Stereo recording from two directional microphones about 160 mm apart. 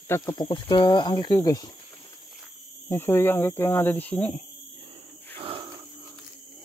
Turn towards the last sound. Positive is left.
turn(degrees=-30)  # may be behind; listen again after turning